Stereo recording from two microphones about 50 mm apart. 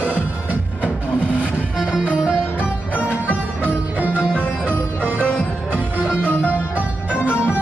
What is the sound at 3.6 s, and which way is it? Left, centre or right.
Music, right.